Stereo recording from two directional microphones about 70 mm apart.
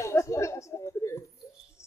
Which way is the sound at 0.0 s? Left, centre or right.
Left.